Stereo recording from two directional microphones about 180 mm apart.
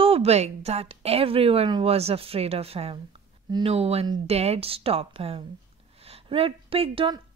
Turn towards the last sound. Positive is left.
turn(degrees=-30)  # may be behind; listen again after turning